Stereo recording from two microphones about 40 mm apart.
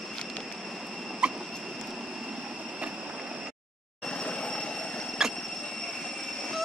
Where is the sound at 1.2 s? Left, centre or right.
Right.